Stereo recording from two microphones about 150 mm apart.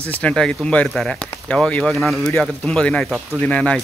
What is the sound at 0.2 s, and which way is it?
Speech, 5° left (ahead or behind).